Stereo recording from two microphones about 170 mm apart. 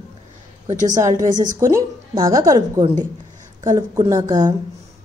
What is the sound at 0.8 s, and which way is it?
Speech, 20° right (ahead or behind).